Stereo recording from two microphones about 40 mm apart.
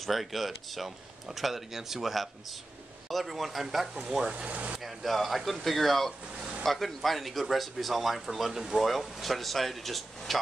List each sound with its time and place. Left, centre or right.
0.0 s speech: centre
4.2 s speech: right
4.5 s speech: right
4.7 s speech: centre
8.8 s speech: centre